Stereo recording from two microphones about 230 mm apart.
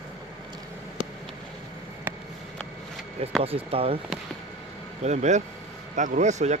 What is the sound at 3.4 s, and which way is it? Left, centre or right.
Speech, right.